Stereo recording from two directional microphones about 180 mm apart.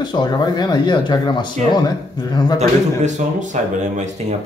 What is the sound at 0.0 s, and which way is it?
Speech, 25° left (ahead or behind).